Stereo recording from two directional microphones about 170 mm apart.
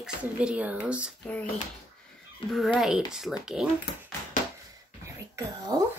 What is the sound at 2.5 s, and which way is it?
Speech, centre (ahead or behind).